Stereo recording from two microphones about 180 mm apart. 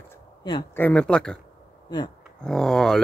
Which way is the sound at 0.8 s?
5° left (ahead or behind).